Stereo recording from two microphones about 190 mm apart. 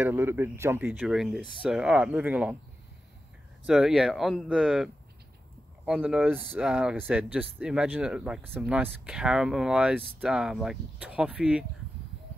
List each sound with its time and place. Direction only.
0.0 s speech: 10° right (ahead or behind)
3.6 s speech: 5° right (ahead or behind)